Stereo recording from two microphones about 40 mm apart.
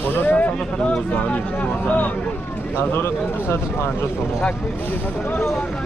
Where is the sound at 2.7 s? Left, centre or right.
Left.